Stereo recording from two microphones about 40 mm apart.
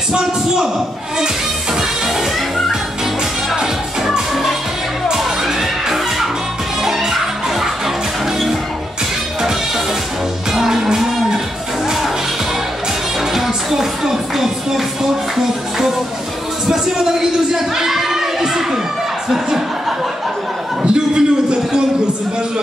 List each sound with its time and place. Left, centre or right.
1.8 s music: centre
10.5 s music: centre
13.2 s music: centre
16.6 s a man's voice: centre
20.8 s a sound: right